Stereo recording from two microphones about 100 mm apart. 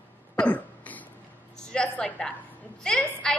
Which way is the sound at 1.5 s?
10° left (ahead or behind).